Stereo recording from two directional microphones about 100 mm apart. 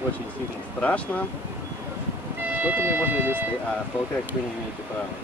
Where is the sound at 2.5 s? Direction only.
15° right (ahead or behind).